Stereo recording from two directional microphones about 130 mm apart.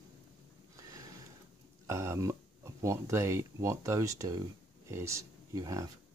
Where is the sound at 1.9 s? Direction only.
20° right (ahead or behind).